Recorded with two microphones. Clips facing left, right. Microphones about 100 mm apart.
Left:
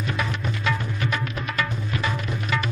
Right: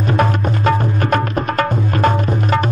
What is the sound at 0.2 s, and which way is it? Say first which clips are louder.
Music: right 12 dB; 50° right (ahead or behind).